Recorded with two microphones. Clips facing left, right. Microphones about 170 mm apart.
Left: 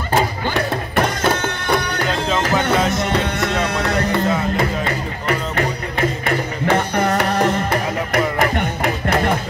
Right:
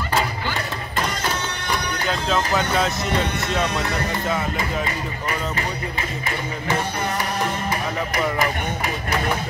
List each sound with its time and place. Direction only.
0.1 s music: 65° left (ahead or behind)
3.3 s music: 65° left (ahead or behind)